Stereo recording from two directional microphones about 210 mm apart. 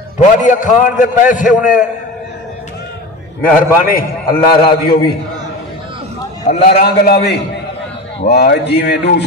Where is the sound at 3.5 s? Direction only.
40° left (ahead or behind).